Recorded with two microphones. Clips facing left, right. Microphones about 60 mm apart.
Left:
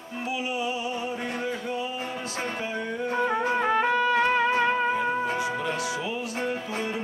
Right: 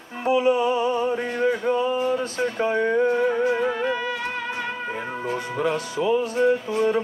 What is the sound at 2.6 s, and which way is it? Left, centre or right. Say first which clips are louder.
Speech: right 10 dB; right.